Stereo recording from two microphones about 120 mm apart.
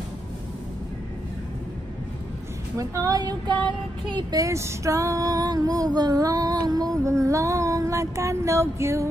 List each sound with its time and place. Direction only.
2.8 s female singing: 30° right (ahead or behind)